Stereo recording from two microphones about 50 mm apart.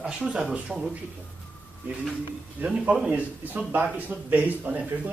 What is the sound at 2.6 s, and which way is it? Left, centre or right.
A man's voice, right.